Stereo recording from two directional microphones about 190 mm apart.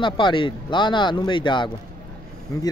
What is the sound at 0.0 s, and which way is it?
Speech, 25° left (ahead or behind).